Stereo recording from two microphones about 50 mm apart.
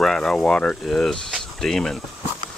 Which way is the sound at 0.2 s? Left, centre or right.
Centre.